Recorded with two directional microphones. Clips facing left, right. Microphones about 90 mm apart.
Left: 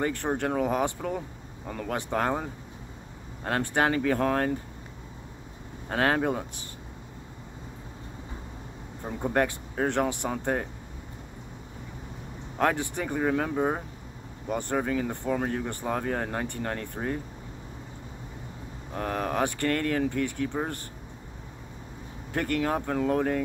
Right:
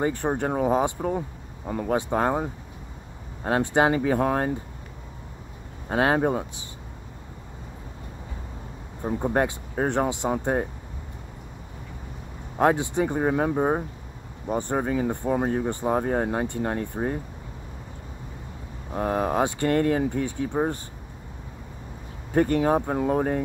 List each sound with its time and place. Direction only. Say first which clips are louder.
0.2 s speech: right 3 dB; 15° right (ahead or behind)
5.9 s speech: right 3 dB; 20° right (ahead or behind)
9.0 s speech: right 3 dB; 20° right (ahead or behind)
12.5 s speech: right 5 dB; 20° right (ahead or behind)
18.9 s speech: right 4 dB; 20° right (ahead or behind)
22.3 s speech: right 7 dB; 20° right (ahead or behind)